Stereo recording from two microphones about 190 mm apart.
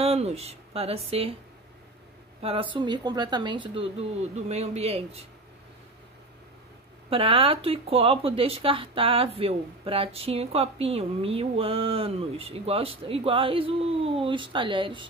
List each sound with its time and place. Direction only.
0.0 s speech: 35° right (ahead or behind)
2.4 s a man's voice: 25° right (ahead or behind)
7.1 s speech: 30° right (ahead or behind)